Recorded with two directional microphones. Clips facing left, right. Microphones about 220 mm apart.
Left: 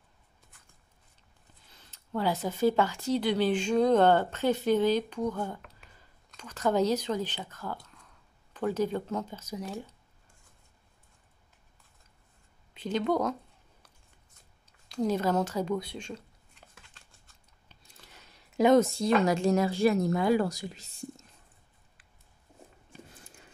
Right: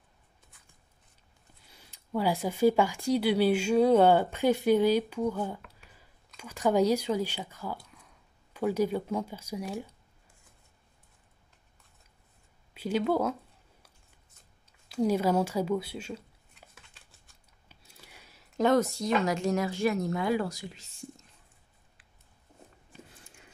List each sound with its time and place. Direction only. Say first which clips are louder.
1.7 s speech: right 2 dB; 10° right (ahead or behind)
12.7 s speech: right 1 dB; 10° right (ahead or behind)
14.7 s a sound: right 2 dB; 10° right (ahead or behind)
18.8 s speech: left 3 dB; 25° left (ahead or behind)